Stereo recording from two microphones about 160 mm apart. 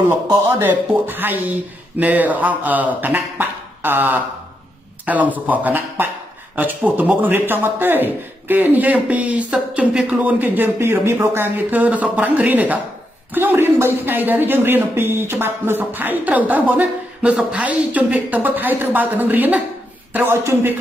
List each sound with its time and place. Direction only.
0.0 s speech: 15° right (ahead or behind)